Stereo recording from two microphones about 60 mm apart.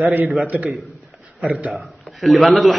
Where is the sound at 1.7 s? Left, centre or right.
Centre.